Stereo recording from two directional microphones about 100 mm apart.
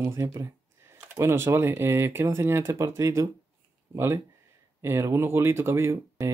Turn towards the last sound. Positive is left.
turn(degrees=-30)  # may be behind; listen again after turning